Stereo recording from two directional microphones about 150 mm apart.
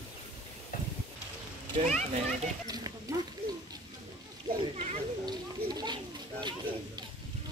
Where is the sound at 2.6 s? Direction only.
25° right (ahead or behind).